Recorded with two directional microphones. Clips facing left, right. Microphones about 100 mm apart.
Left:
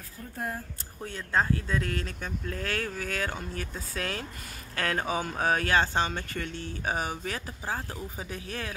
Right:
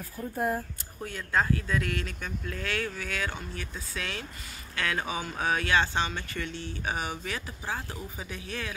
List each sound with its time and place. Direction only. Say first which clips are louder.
1.0 s speech: even; 30° left (ahead or behind)